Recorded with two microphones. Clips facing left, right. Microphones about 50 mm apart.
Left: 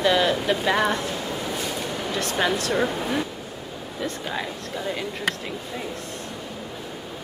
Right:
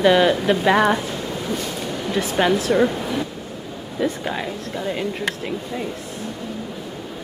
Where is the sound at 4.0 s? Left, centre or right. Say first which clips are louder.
Right 6 dB; centre.